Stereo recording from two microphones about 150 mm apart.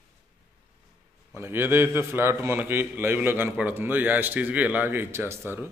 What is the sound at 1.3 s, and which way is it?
A man's voice, 15° right (ahead or behind).